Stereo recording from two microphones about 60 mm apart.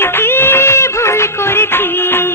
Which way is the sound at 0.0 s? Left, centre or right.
Left.